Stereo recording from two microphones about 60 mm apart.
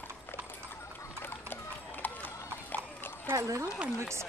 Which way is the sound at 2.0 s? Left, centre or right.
Left.